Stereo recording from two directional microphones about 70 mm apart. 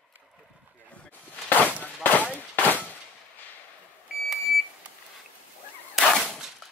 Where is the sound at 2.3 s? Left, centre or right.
Left.